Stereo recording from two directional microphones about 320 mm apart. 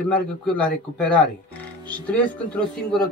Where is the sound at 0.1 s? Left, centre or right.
Centre.